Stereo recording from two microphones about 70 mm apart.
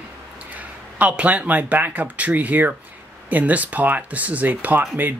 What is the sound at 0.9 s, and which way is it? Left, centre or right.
Speech, centre.